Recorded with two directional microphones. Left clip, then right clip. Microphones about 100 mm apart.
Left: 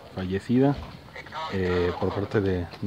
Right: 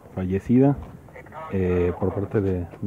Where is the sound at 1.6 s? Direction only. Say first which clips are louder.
Right 3 dB; 20° right (ahead or behind).